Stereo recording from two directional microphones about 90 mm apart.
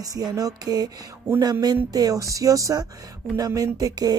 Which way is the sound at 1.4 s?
45° right (ahead or behind).